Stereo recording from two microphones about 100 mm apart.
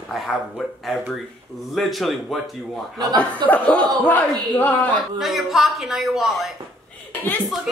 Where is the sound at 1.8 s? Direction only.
Centre (ahead or behind).